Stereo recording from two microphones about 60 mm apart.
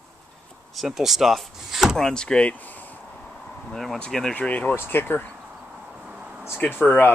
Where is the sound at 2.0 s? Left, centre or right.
Centre.